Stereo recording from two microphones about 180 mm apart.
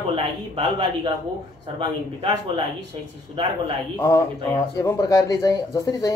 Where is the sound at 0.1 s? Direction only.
30° right (ahead or behind).